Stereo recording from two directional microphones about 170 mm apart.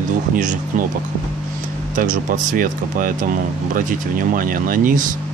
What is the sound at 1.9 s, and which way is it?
Speech, 50° right (ahead or behind).